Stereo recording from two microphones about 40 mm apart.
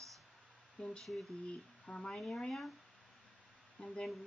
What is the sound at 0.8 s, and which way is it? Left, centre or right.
Speech, left.